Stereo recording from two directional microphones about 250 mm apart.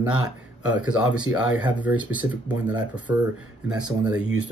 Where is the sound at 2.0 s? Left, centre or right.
Centre.